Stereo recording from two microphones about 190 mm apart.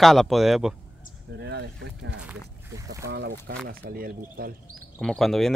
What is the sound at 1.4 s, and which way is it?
Speech, 65° right (ahead or behind).